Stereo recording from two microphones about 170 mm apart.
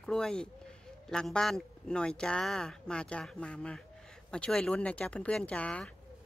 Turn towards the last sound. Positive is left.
turn(degrees=5)  # may be behind; listen again after turning